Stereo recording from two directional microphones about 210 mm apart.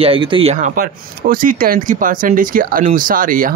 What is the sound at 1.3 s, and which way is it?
Speech, 40° right (ahead or behind).